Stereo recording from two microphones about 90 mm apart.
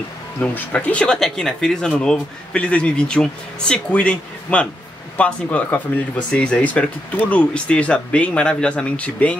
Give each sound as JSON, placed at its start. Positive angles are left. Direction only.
{"t": 0.4, "sound": "speech", "side_deg": 15}